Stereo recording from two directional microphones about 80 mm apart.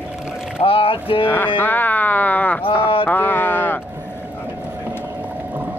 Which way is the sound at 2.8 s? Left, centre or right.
Left.